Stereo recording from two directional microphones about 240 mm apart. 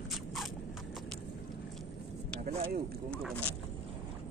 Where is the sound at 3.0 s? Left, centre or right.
Centre.